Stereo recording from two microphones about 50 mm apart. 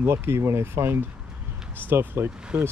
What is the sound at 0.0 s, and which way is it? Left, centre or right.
Speech, right.